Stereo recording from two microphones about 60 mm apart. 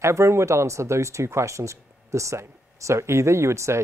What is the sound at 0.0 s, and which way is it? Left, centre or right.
Speech, right.